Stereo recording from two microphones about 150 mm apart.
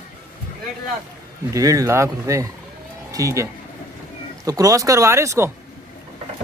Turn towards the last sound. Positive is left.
turn(degrees=-20)  # may be behind; listen again after turning